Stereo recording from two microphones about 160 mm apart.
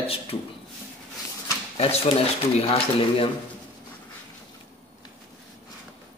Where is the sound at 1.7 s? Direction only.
35° left (ahead or behind).